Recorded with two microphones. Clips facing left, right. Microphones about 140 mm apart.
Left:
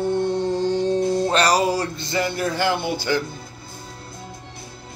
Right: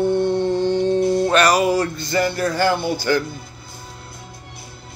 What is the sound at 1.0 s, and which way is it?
Music, 25° left (ahead or behind).